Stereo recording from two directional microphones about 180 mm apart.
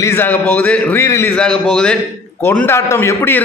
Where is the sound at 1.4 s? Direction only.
5° left (ahead or behind).